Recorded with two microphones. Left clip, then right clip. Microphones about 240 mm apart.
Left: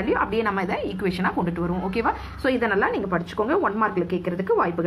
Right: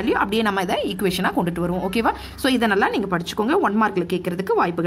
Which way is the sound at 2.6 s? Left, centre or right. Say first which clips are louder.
Right 4 dB; right.